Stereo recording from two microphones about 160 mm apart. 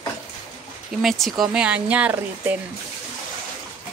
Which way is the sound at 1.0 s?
Centre (ahead or behind).